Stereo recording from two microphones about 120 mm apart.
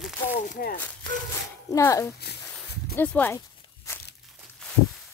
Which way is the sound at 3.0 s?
15° left (ahead or behind).